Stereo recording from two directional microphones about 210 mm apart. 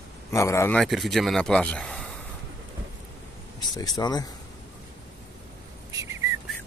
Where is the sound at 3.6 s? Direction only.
20° left (ahead or behind).